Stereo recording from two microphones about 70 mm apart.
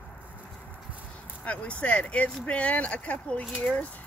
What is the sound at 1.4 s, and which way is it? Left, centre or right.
Speech, centre.